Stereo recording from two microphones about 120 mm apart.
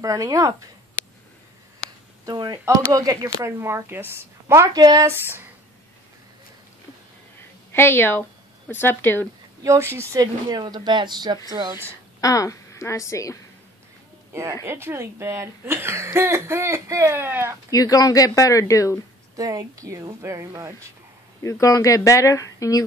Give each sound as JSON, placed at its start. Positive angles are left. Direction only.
{"t": 0.0, "sound": "speech", "side_deg": -30}
{"t": 2.2, "sound": "speech", "side_deg": -35}
{"t": 4.7, "sound": "speech", "side_deg": -30}
{"t": 5.2, "sound": "speech", "side_deg": -20}
{"t": 7.7, "sound": "speech", "side_deg": 20}
{"t": 9.6, "sound": "a woman's voice", "side_deg": -25}
{"t": 12.2, "sound": "a woman's voice", "side_deg": 30}
{"t": 14.3, "sound": "speech", "side_deg": -25}
{"t": 17.6, "sound": "speech", "side_deg": 30}
{"t": 19.3, "sound": "speech", "side_deg": -30}
{"t": 21.4, "sound": "speech", "side_deg": 25}